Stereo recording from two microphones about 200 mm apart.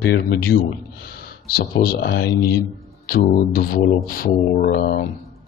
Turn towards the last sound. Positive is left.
turn(degrees=45)  # may be behind; listen again after turning